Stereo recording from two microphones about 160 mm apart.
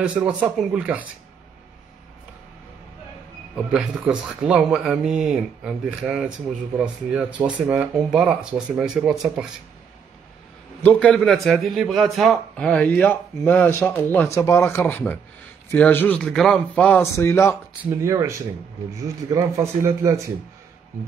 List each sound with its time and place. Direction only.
0.0 s speech: 5° right (ahead or behind)
3.5 s speech: 5° right (ahead or behind)
10.8 s a man's voice: 10° left (ahead or behind)
18.0 s a man's voice: 20° right (ahead or behind)